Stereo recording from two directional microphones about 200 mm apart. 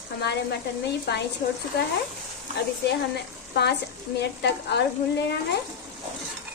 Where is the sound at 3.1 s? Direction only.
55° left (ahead or behind).